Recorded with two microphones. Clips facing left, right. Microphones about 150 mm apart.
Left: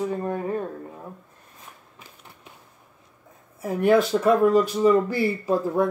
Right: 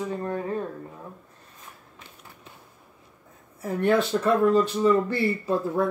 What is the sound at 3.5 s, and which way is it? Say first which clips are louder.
Speech: left 3 dB; 10° left (ahead or behind).